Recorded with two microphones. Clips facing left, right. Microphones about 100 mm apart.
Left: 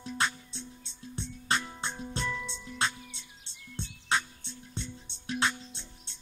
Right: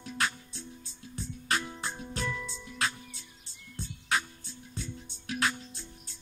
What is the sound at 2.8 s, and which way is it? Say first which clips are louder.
Music: left 1 dB; 30° left (ahead or behind).